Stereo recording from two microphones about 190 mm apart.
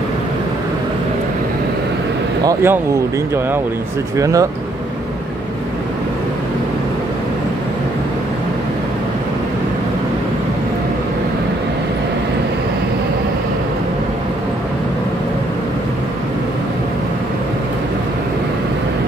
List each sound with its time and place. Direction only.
2.4 s speech: 10° right (ahead or behind)
4.2 s speech: 15° right (ahead or behind)